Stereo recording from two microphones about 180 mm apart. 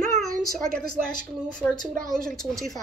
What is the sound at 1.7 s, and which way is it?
Speech, 25° left (ahead or behind).